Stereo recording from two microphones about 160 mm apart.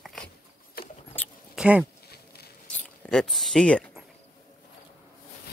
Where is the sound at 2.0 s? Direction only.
80° left.